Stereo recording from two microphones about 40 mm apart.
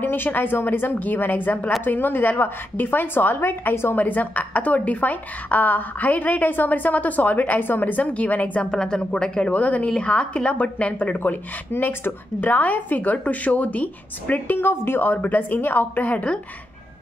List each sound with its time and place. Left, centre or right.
0.0 s a woman's voice: left
1.9 s a woman's voice: left
3.9 s a woman's voice: left
8.6 s speech: centre
9.5 s a woman's voice: left
11.8 s a woman's voice: left
14.6 s a woman's voice: left
15.9 s a woman's voice: left